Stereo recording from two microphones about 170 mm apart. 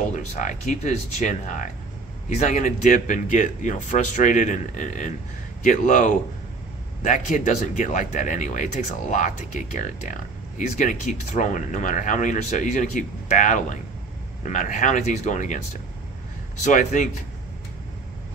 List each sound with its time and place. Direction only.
0.1 s speech: 45° left (ahead or behind)
10.8 s speech: 50° left (ahead or behind)
16.6 s speech: 50° left (ahead or behind)